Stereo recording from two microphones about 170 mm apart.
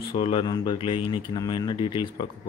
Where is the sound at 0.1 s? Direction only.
30° left (ahead or behind).